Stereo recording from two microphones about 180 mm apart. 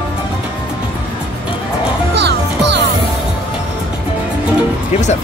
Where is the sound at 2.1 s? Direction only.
70° right (ahead or behind).